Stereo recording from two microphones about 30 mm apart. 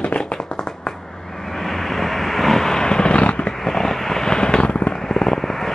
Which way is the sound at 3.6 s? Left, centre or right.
Centre.